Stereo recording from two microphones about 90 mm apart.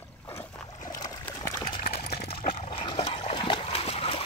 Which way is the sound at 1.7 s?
90° left.